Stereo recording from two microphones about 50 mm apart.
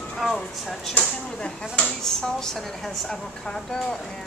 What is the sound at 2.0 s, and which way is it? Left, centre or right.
Speech, centre.